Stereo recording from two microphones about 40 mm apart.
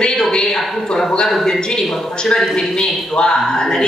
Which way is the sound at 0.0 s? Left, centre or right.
Left.